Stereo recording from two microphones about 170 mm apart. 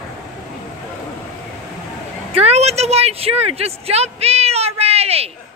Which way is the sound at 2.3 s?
40° right (ahead or behind).